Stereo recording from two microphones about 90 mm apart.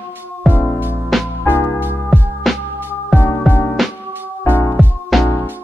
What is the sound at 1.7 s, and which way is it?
Music, 20° right (ahead or behind).